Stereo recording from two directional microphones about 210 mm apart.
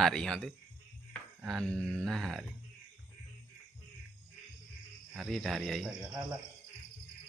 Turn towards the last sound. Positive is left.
turn(degrees=-5)  # may be behind; listen again after turning